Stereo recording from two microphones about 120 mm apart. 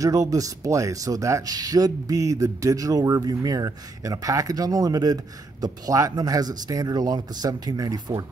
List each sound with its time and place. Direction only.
0.0 s speech: 30° right (ahead or behind)